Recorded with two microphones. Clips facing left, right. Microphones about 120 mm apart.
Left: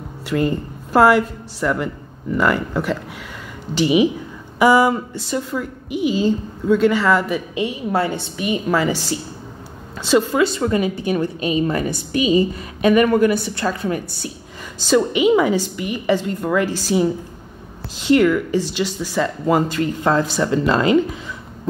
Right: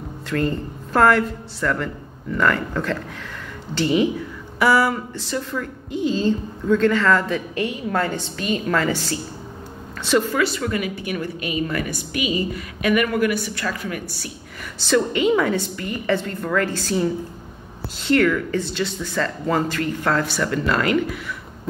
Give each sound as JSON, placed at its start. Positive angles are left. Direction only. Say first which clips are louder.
{"t": 0.3, "sound": "a woman's voice", "louder": "left 3 dB", "side_deg": 15}
{"t": 10.0, "sound": "a woman's voice", "louder": "left 3 dB", "side_deg": 20}
{"t": 14.9, "sound": "a woman's voice", "louder": "left 3 dB", "side_deg": 15}